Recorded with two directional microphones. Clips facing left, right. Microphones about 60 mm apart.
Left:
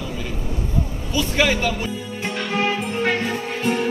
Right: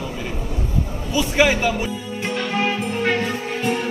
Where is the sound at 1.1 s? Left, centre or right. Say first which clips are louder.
Right 2 dB; centre.